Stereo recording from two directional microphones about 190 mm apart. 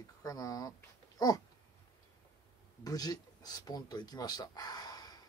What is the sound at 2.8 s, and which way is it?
Speech, 20° left (ahead or behind).